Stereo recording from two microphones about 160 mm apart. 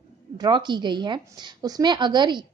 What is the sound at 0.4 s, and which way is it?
Speech, 30° right (ahead or behind).